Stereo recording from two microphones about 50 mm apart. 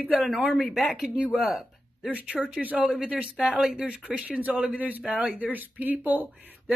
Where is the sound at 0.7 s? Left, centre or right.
Centre.